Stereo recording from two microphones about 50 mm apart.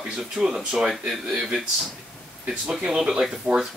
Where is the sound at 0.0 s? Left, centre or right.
Centre.